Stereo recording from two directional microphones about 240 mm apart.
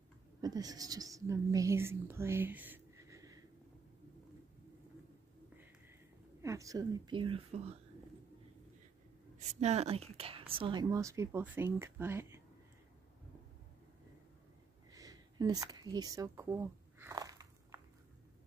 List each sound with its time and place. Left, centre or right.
0.4 s a woman's voice: centre
6.4 s a woman's voice: centre
9.6 s a woman's voice: right; by 12.4 s centre
14.9 s a sound: centre